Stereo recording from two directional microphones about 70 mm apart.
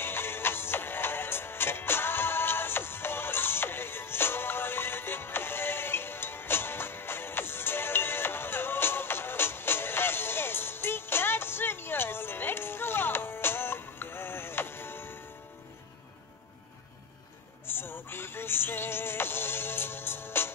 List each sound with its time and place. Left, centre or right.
0.0 s music: left
17.6 s synthetic singing: left